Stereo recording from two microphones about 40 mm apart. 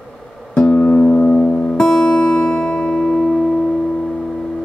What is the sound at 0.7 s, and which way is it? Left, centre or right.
Music, left.